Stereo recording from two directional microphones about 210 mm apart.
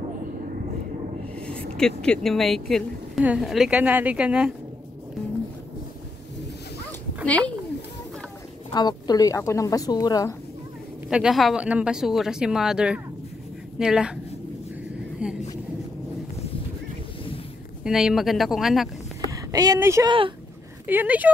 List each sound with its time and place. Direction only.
1.3 s a sound: 5° left (ahead or behind)
1.8 s a woman's voice: 5° left (ahead or behind)
7.2 s speech: 5° left (ahead or behind)
8.7 s speech: 20° left (ahead or behind)
11.1 s a woman's voice: 5° right (ahead or behind)
15.2 s a sound: 5° right (ahead or behind)
17.8 s a woman's voice: 5° right (ahead or behind)
19.3 s a woman's voice: 15° right (ahead or behind)
20.8 s speech: 10° right (ahead or behind)